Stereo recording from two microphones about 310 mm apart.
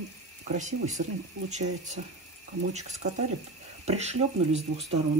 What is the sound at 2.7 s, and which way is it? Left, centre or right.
Speech, right.